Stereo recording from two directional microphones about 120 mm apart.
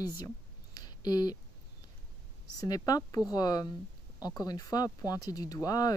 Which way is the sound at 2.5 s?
30° left (ahead or behind).